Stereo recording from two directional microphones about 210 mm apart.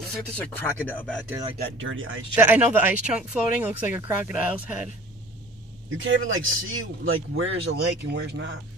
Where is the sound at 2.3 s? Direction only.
10° right (ahead or behind).